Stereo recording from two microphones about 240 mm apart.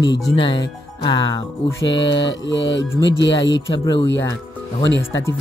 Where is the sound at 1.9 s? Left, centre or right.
Left.